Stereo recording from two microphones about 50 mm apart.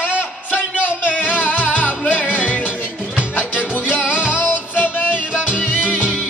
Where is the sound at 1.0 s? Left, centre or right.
Left.